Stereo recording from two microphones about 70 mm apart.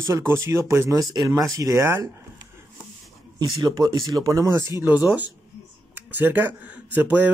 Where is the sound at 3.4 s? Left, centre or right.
Right.